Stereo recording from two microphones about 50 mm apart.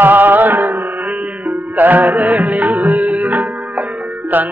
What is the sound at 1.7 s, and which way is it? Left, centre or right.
Music, right.